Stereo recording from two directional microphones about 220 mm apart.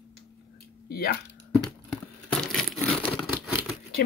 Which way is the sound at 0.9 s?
45° left (ahead or behind).